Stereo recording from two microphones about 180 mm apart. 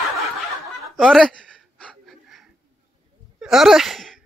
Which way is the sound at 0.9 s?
Centre (ahead or behind).